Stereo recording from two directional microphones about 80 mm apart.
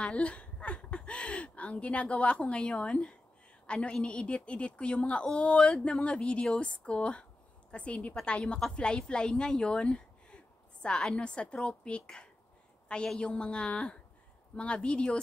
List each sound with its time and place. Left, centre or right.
0.0 s a woman's voice: centre